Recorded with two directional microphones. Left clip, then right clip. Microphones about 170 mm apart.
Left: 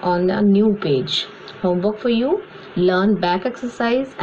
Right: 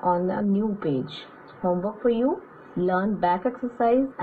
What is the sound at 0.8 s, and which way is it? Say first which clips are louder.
Speech: left 9 dB; 45° right (ahead or behind).